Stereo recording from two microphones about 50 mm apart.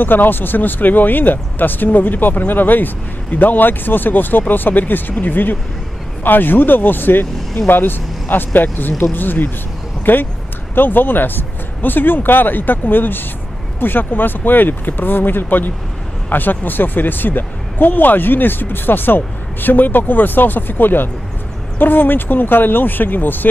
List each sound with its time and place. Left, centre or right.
0.0 s speech: left